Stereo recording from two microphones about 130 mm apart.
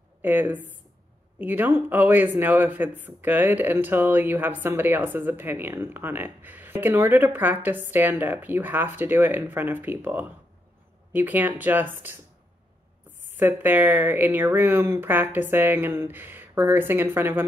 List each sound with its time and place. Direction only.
0.2 s speech: 15° right (ahead or behind)
13.2 s speech: 15° right (ahead or behind)